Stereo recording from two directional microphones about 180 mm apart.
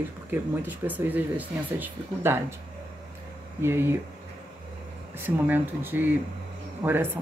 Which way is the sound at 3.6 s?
15° right (ahead or behind).